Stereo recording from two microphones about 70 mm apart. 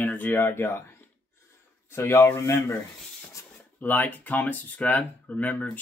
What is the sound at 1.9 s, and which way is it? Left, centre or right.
Speech, left.